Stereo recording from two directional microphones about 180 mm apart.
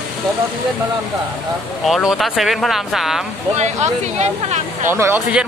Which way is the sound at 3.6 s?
40° right (ahead or behind).